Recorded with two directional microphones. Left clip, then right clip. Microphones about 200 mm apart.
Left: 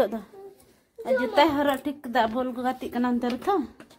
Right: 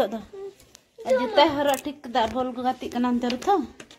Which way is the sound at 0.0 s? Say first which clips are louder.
Even; centre (ahead or behind).